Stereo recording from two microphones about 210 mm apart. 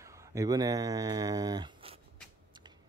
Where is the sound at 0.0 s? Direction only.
15° right (ahead or behind).